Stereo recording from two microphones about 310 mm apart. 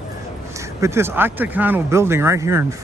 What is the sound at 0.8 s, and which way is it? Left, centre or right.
Speech, centre.